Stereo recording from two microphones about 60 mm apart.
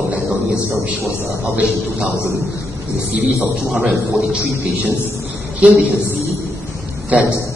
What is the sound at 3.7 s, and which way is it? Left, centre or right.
Speech, centre.